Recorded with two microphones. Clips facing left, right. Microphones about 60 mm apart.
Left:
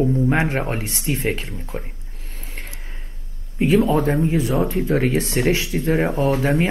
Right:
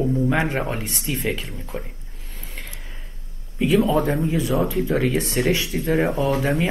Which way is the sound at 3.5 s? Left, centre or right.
Left.